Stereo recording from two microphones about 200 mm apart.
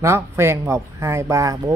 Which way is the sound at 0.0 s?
15° right (ahead or behind).